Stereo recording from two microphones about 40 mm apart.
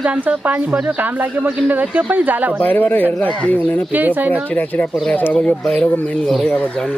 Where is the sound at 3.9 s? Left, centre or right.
Right.